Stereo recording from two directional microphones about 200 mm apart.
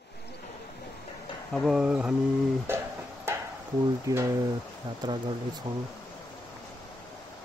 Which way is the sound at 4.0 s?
15° right (ahead or behind).